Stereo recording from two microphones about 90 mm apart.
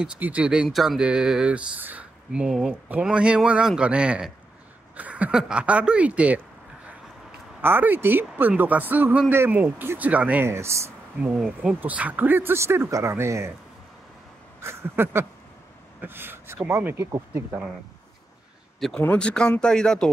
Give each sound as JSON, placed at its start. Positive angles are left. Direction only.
{"t": 0.2, "sound": "speech", "side_deg": -15}
{"t": 7.6, "sound": "speech", "side_deg": -20}
{"t": 10.4, "sound": "speech", "side_deg": -30}
{"t": 11.3, "sound": "speech", "side_deg": -10}
{"t": 14.6, "sound": "a sound", "side_deg": -30}
{"t": 16.0, "sound": "speech", "side_deg": -25}
{"t": 18.9, "sound": "speech", "side_deg": 15}